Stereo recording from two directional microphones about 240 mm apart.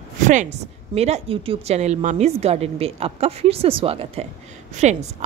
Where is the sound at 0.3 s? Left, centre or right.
Right.